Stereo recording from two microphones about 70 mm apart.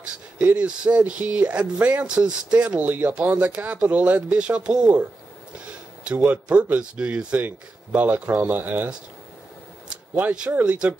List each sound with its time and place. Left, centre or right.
0.4 s speech: right